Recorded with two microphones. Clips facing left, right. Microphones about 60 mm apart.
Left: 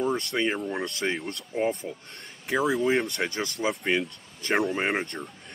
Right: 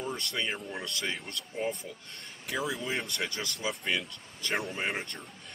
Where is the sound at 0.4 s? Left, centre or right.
Left.